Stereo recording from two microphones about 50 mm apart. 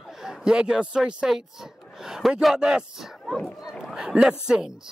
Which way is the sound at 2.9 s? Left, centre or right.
Centre.